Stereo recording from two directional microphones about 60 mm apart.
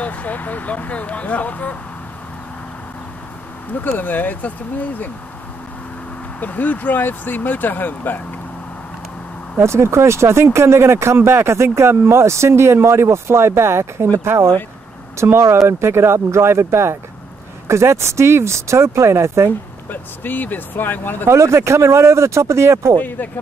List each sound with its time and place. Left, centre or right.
0.0 s speech: left
3.8 s speech: left
6.4 s speech: left
9.6 s speech: right
19.9 s speech: left
21.3 s speech: right
22.9 s speech: left